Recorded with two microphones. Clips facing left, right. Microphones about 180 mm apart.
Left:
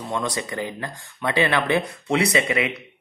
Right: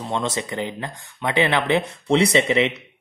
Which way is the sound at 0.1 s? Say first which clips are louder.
Right 1 dB; 25° right (ahead or behind).